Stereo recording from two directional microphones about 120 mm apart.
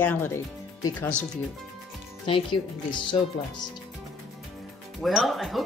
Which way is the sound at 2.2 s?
45° left (ahead or behind).